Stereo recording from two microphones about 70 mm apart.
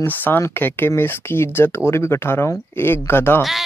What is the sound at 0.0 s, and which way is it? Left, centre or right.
Speech, left.